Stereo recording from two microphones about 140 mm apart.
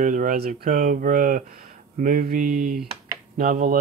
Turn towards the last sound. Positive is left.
turn(degrees=-85)